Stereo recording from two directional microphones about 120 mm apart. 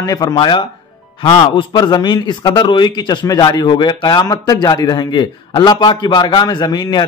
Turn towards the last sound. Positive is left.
turn(degrees=35)  # may be behind; listen again after turning